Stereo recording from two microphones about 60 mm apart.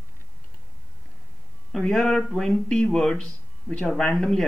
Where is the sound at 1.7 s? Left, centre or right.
Centre.